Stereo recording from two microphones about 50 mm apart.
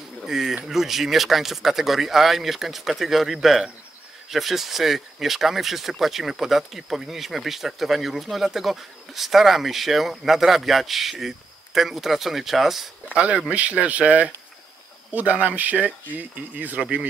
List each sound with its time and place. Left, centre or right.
0.2 s a sound: centre
0.7 s speech: centre
13.1 s speech: right